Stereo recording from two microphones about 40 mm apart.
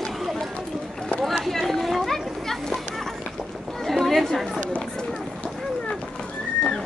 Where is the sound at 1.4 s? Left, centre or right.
Centre.